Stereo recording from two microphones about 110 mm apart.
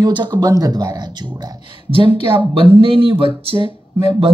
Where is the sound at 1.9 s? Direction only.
55° right (ahead or behind).